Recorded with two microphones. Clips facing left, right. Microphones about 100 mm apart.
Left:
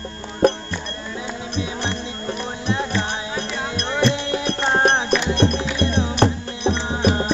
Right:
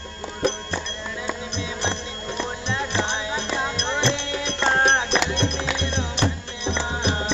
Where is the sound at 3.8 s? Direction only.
45° left (ahead or behind).